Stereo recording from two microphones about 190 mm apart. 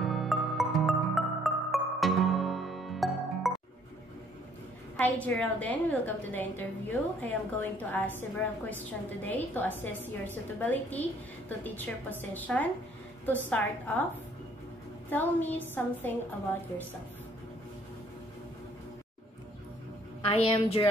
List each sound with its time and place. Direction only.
0.0 s music: centre (ahead or behind)
4.9 s a woman's voice: 5° left (ahead or behind)
15.0 s a woman's voice: 10° left (ahead or behind)
20.2 s a woman's voice: 25° left (ahead or behind)